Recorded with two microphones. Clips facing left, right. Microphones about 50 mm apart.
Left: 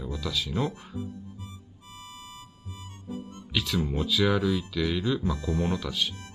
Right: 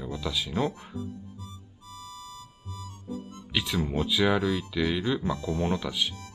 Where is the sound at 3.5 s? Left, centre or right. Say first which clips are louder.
Even; centre.